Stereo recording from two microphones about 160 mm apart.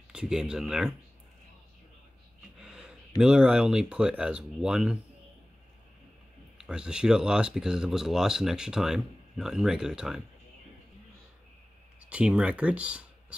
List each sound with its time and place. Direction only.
0.1 s speech: 5° right (ahead or behind)
2.6 s speech: 5° right (ahead or behind)
6.6 s speech: 5° right (ahead or behind)
12.0 s speech: 5° right (ahead or behind)